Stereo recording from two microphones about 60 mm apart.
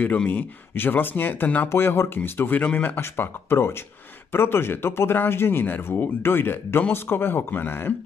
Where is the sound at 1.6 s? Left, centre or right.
Left.